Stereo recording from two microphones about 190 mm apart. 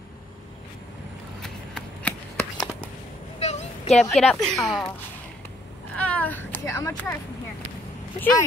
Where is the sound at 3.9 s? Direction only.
Centre (ahead or behind).